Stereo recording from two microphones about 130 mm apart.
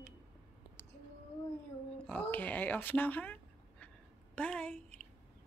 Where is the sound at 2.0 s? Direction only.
10° left (ahead or behind).